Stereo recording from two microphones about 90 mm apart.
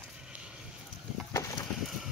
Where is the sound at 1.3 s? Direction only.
35° left (ahead or behind).